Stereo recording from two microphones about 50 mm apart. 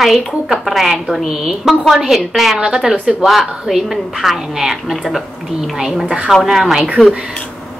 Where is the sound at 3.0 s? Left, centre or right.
Centre.